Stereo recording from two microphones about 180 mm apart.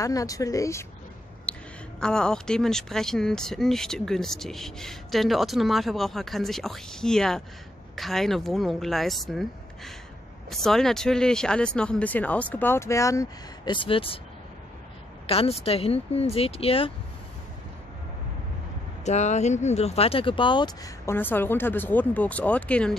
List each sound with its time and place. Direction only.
0.0 s speech: 20° left (ahead or behind)
1.5 s a sound: 5° left (ahead or behind)
2.0 s speech: 5° left (ahead or behind); by 14.2 s 30° left (ahead or behind)
15.2 s speech: 35° left (ahead or behind)
19.0 s speech: 40° left (ahead or behind); by 22.9 s 5° left (ahead or behind)